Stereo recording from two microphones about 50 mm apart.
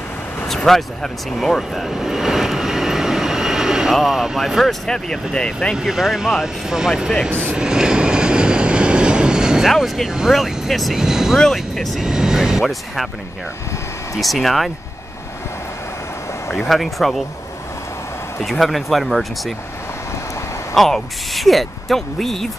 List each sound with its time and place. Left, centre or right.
0.5 s vehicle: centre
3.9 s speech: centre
4.8 s speech: centre
5.8 s speech: centre
7.5 s vehicle: centre
9.7 s speech: centre
11.5 s speech: centre
12.0 s speech: centre
12.6 s speech: centre
14.2 s speech: centre
16.4 s speech: centre
18.4 s speech: centre
20.7 s speech: centre